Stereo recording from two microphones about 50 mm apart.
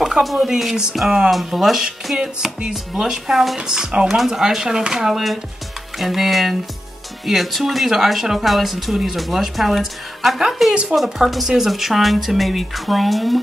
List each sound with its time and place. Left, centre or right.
0.2 s speech: centre
10.7 s speech: centre
11.0 s speech: centre